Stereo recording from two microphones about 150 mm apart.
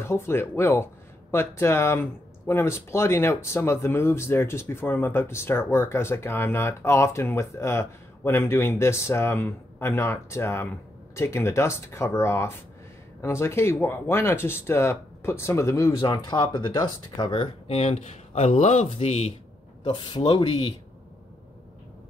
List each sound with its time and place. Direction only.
0.0 s speech: 15° left (ahead or behind); by 19.3 s 45° left (ahead or behind)
19.8 s speech: 30° left (ahead or behind)